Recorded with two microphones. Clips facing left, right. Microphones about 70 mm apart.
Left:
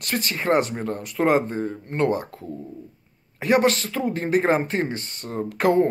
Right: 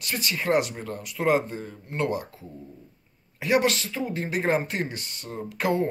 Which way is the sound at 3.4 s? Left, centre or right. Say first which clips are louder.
Left 4 dB; left.